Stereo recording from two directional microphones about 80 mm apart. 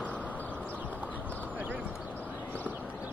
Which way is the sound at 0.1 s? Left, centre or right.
Centre.